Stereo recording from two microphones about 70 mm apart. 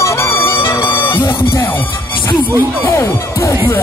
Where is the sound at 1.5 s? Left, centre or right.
Left.